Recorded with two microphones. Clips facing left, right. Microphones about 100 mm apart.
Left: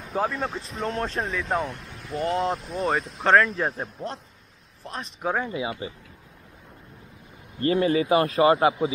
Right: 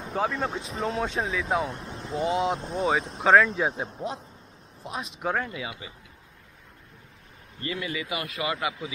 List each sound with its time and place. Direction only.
0.0 s speech: centre (ahead or behind)
1.7 s a sound: 25° right (ahead or behind)
2.1 s speech: centre (ahead or behind)
5.5 s speech: 25° left (ahead or behind)
7.6 s speech: 40° left (ahead or behind)